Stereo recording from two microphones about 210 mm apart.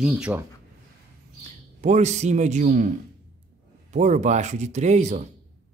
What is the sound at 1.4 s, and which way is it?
A man's voice, 35° right (ahead or behind).